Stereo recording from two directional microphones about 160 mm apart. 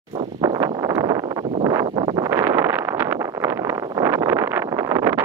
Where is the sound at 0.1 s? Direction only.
25° right (ahead or behind).